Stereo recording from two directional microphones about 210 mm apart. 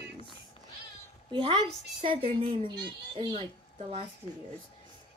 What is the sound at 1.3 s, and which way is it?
Speech, 25° right (ahead or behind).